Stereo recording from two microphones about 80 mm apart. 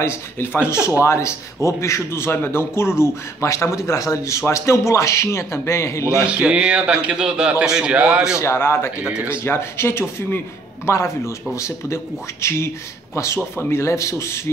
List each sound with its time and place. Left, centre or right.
0.0 s speech: left
6.0 s a man's voice: centre
8.4 s speech: left
9.0 s a man's voice: centre
9.3 s speech: left